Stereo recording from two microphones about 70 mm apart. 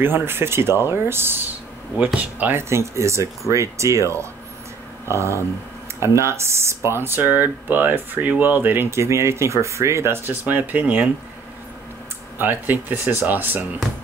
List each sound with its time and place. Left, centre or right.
0.0 s speech: right
2.1 s speech: right
2.7 s speech: right
9.0 s speech: right
12.4 s speech: right